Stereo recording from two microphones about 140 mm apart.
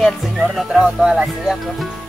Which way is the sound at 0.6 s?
Centre (ahead or behind).